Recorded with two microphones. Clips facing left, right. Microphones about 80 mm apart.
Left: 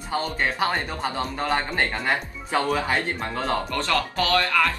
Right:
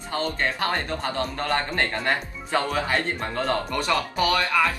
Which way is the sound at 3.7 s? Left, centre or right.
Right.